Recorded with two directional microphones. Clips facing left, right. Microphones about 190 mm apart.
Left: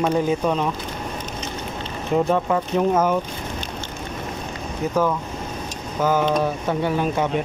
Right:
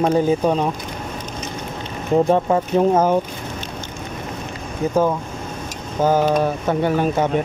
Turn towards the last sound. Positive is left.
turn(degrees=-50)  # may be behind; listen again after turning